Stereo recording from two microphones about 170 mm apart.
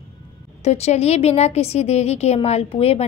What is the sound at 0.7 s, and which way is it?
A woman's voice, 40° left (ahead or behind).